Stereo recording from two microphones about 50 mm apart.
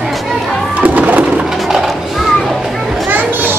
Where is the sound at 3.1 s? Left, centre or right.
Right.